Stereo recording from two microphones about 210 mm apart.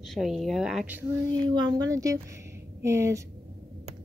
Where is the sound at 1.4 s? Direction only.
20° right (ahead or behind).